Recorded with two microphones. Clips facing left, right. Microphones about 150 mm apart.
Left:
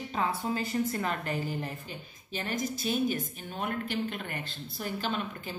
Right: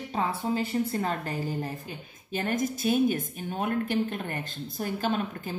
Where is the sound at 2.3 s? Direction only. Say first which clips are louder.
Right 5 dB; 50° right (ahead or behind).